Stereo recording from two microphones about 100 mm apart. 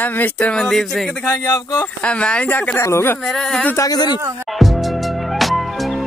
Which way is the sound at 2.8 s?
25° left (ahead or behind).